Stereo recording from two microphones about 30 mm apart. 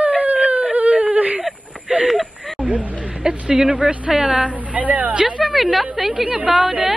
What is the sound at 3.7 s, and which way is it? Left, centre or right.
Speech, right.